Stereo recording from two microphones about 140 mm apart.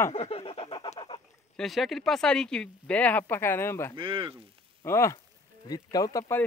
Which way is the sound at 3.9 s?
40° right (ahead or behind).